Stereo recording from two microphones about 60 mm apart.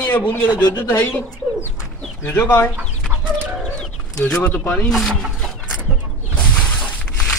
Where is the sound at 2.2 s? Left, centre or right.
Left.